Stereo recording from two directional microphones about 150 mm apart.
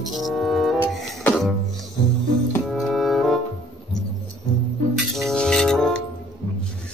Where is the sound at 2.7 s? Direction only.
Centre (ahead or behind).